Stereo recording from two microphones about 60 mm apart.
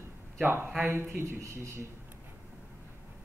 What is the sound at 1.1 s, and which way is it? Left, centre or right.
Speech, right.